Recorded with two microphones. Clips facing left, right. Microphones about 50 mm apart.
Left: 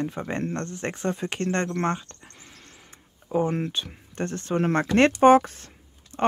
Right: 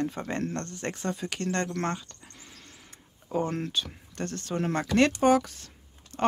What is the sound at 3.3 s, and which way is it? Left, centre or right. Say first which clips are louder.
Speech: left 4 dB; centre.